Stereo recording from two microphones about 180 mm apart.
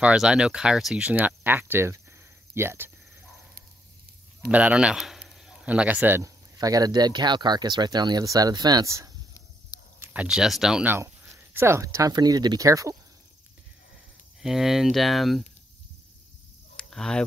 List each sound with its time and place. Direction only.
0.0 s speech: 5° right (ahead or behind)
4.5 s speech: 10° right (ahead or behind)
14.4 s speech: centre (ahead or behind)
16.7 s a sound: 5° left (ahead or behind)